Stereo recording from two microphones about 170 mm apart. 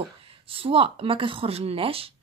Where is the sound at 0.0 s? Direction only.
30° right (ahead or behind).